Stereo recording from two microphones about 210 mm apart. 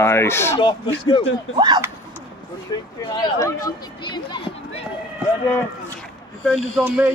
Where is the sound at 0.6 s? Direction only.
20° left (ahead or behind).